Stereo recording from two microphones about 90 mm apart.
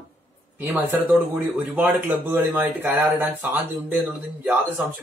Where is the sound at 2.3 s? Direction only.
20° right (ahead or behind).